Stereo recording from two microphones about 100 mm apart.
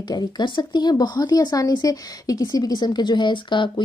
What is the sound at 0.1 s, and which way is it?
Speech, 45° left (ahead or behind).